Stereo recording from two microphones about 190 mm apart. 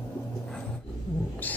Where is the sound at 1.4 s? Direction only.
10° left (ahead or behind).